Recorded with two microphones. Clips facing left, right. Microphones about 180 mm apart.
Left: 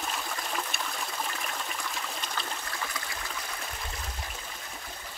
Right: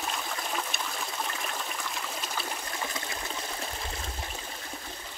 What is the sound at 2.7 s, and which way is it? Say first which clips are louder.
Water: right 2 dB; 20° right (ahead or behind).